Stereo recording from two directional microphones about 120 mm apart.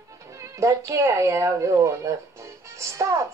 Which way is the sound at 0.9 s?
25° right (ahead or behind).